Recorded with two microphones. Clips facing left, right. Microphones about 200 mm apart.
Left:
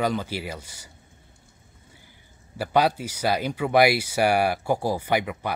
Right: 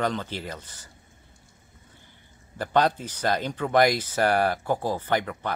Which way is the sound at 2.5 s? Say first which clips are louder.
Left 1 dB; 10° left (ahead or behind).